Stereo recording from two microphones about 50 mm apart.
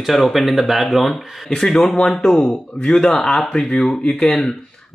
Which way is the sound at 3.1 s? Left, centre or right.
Centre.